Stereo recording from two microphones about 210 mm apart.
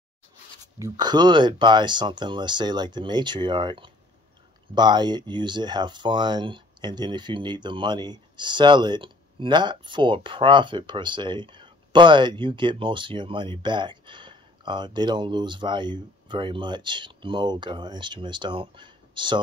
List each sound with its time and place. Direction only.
0.7 s speech: 15° right (ahead or behind)